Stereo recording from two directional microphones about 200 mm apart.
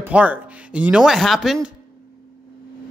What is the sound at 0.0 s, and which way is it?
Speech, 10° right (ahead or behind).